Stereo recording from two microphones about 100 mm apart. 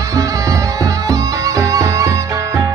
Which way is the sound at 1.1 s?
35° right (ahead or behind).